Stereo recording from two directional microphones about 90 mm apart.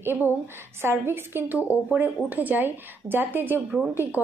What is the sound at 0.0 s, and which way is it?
A woman's voice, 25° right (ahead or behind).